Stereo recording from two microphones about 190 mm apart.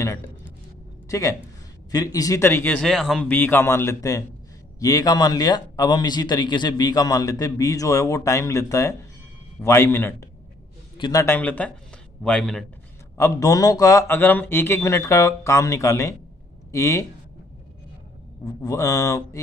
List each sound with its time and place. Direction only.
1.0 s a sound: 15° left (ahead or behind)
1.9 s a man's voice: 20° left (ahead or behind); by 12.6 s 5° left (ahead or behind)
13.2 s a man's voice: 15° left (ahead or behind)
18.6 s a man's voice: 20° left (ahead or behind)